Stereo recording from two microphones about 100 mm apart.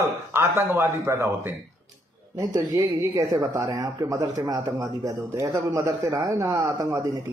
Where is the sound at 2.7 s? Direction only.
35° right (ahead or behind).